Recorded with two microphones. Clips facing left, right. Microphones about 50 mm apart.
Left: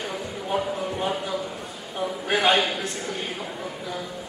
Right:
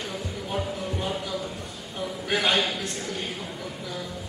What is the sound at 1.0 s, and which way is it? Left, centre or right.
Speech, left.